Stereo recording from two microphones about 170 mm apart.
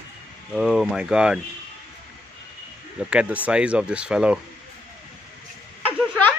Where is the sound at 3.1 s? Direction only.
10° right (ahead or behind).